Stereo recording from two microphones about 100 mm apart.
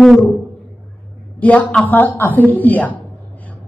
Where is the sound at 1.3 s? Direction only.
15° left (ahead or behind).